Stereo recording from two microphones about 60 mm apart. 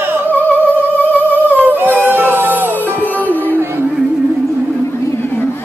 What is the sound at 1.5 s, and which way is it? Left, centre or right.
Howl, right.